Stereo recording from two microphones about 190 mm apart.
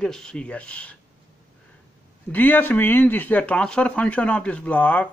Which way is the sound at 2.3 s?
10° left (ahead or behind).